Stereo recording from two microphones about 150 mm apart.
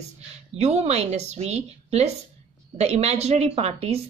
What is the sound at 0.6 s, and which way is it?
Speech, 45° right (ahead or behind).